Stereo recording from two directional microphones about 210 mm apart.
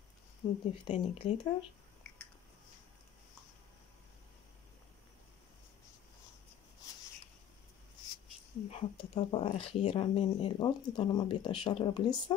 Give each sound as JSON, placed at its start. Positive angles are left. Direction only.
{"t": 0.4, "sound": "speech", "side_deg": 20}
{"t": 8.6, "sound": "speech", "side_deg": 30}